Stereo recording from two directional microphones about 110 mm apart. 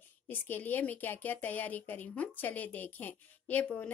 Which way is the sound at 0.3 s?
15° left (ahead or behind).